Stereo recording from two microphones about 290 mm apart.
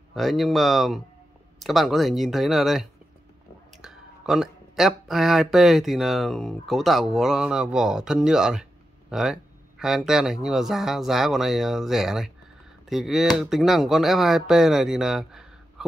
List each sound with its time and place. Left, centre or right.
0.1 s speech: centre